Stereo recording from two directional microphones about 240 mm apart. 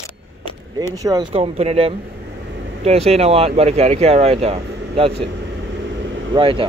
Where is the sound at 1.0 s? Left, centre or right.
Centre.